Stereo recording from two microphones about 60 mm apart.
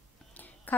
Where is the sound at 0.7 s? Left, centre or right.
Left.